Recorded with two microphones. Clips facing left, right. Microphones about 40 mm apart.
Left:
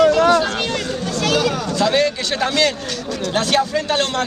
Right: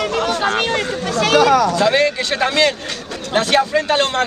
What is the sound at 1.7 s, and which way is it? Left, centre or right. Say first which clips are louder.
Speech: right 2 dB; centre.